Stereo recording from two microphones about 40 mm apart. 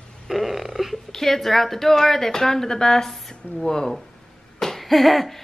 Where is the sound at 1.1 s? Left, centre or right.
Centre.